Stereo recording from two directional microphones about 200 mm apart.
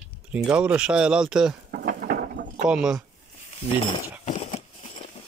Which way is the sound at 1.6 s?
50° right (ahead or behind).